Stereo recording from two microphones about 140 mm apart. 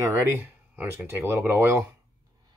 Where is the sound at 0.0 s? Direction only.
20° right (ahead or behind).